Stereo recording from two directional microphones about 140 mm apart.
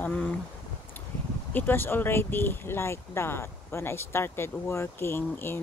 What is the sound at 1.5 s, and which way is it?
Speech, 15° left (ahead or behind).